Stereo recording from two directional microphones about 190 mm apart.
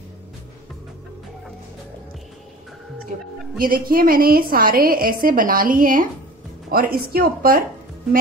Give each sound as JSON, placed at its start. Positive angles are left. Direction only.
{"t": 3.5, "sound": "a woman's voice", "side_deg": -50}